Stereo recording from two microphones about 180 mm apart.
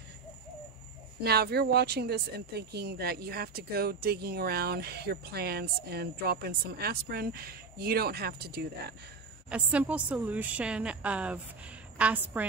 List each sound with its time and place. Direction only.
1.2 s speech: 65° right (ahead or behind)
9.5 s a woman's voice: 10° right (ahead or behind)